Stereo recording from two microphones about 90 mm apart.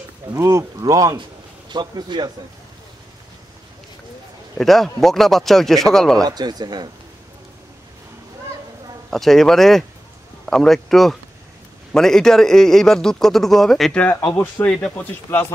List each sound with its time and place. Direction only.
0.3 s speech: 35° right (ahead or behind)
1.7 s speech: 55° right (ahead or behind)
4.6 s a man's voice: 5° left (ahead or behind)
6.2 s speech: 50° right (ahead or behind)
9.1 s a man's voice: 5° left (ahead or behind)
14.0 s speech: 20° left (ahead or behind)